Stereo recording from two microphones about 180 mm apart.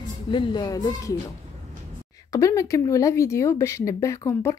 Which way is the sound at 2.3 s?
15° left (ahead or behind).